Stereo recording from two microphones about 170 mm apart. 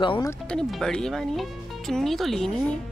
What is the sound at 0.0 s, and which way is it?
Speech, 30° left (ahead or behind).